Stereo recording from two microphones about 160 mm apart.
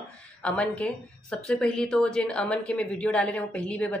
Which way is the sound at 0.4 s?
5° left (ahead or behind).